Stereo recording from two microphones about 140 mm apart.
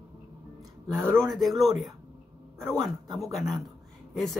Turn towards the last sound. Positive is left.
turn(degrees=0)  # may be behind; listen again after turning